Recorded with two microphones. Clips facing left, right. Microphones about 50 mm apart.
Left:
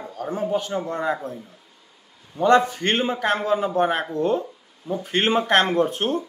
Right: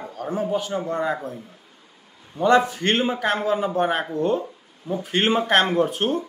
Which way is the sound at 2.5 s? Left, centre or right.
Centre.